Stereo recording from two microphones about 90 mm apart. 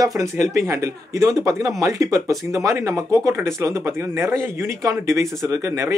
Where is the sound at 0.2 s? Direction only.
35° right (ahead or behind).